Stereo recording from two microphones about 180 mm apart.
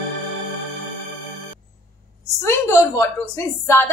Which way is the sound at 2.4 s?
15° left (ahead or behind).